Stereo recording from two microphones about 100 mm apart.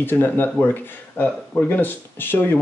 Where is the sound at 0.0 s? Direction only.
20° left (ahead or behind).